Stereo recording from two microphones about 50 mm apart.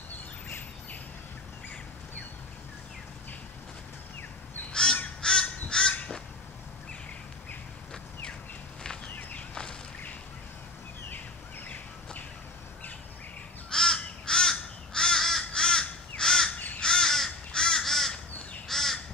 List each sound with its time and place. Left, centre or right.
4.9 s crow: centre
11.1 s bird: left
13.7 s crow: centre
16.5 s crow: left
16.8 s crow: centre